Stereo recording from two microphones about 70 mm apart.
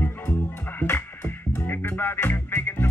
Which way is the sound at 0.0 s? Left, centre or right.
Left.